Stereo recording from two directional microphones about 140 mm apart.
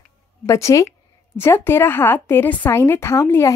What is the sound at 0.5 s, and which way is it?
A woman's voice, 20° left (ahead or behind).